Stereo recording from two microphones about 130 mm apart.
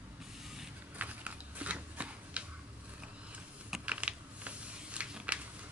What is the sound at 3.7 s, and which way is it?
Typing, 10° right (ahead or behind).